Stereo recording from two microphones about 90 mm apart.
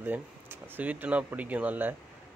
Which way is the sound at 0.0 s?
25° right (ahead or behind).